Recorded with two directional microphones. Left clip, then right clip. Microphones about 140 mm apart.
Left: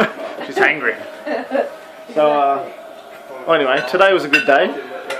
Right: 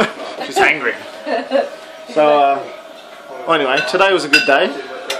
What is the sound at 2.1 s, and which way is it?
Speech, 25° right (ahead or behind).